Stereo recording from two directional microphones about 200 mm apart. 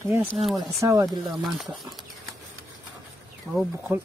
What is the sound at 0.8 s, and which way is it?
Speech, 15° right (ahead or behind).